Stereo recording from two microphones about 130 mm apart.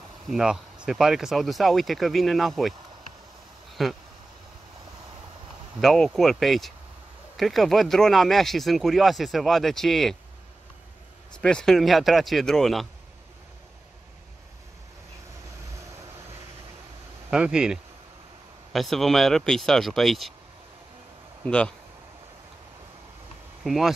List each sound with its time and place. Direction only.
0.3 s speech: 5° right (ahead or behind)
3.8 s speech: centre (ahead or behind)
5.8 s speech: centre (ahead or behind)
11.4 s speech: 5° left (ahead or behind)
17.3 s speech: 5° right (ahead or behind)
21.5 s speech: 10° left (ahead or behind)
23.6 s speech: centre (ahead or behind)